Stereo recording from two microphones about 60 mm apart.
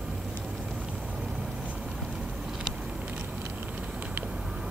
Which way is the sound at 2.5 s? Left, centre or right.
Centre.